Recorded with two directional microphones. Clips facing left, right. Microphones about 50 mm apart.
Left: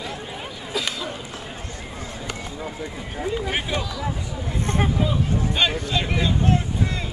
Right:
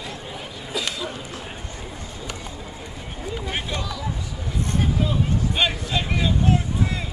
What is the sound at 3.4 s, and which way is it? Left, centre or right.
Speech, centre.